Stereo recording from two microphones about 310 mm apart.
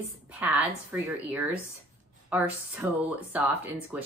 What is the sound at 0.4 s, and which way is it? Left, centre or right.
A woman's voice, centre.